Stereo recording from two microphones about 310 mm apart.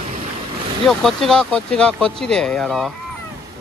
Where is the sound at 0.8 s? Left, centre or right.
Centre.